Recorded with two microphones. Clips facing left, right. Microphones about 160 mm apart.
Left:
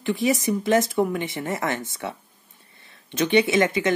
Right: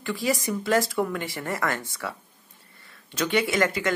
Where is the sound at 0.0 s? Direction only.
20° left (ahead or behind).